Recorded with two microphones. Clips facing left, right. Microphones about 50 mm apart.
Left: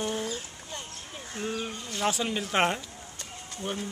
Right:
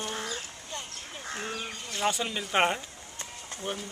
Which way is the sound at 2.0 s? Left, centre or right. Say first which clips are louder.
Left 1 dB; centre.